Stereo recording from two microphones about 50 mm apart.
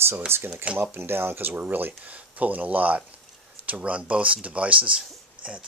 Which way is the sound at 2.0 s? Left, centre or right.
Right.